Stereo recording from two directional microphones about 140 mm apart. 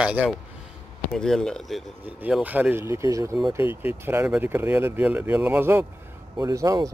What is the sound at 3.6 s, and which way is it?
Speech, 35° left (ahead or behind).